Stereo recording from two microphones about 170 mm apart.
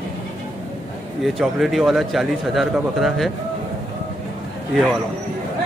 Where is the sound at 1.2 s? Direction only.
Centre (ahead or behind).